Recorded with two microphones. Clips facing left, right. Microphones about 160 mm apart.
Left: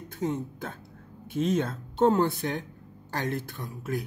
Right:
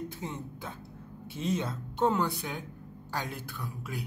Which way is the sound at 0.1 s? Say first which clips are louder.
Left 9 dB; 50° left (ahead or behind).